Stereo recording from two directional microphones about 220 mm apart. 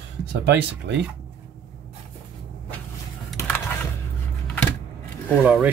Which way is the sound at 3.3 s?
10° left (ahead or behind).